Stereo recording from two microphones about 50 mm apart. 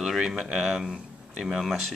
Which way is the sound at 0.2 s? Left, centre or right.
Centre.